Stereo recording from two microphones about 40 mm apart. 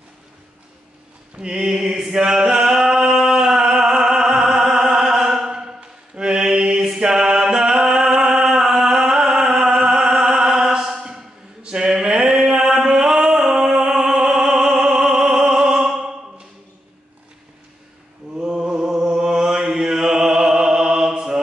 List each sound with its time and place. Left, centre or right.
1.4 s mantra: centre
6.8 s music: centre
11.6 s a sound: right
18.3 s mantra: centre